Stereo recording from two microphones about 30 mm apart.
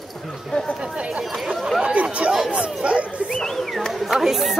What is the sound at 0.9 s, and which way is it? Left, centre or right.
Speech, right.